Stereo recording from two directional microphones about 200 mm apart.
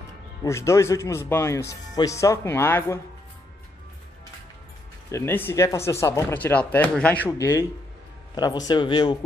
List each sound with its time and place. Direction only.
0.4 s speech: 15° left (ahead or behind)
5.1 s speech: 10° left (ahead or behind)
8.4 s speech: 20° left (ahead or behind)